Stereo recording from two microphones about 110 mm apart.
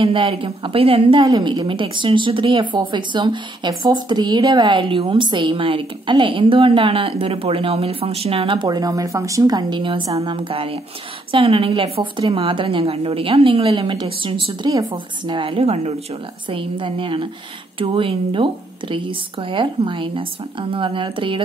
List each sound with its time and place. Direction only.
0.0 s a woman's voice: 55° right (ahead or behind)
1.2 s a woman's voice: 40° right (ahead or behind); by 16.0 s 75° right (ahead or behind)
16.4 s a woman's voice: 50° right (ahead or behind)